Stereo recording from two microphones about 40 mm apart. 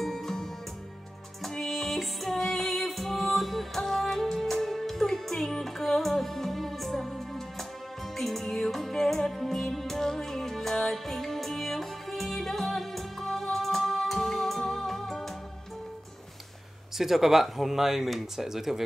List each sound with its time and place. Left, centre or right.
0.0 s music: centre
1.6 s music: centre
17.0 s speech: centre